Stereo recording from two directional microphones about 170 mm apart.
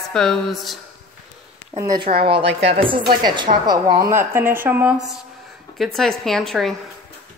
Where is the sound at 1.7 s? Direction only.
20° right (ahead or behind).